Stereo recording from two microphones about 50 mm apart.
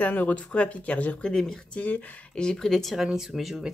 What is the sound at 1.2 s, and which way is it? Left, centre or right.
Speech, centre.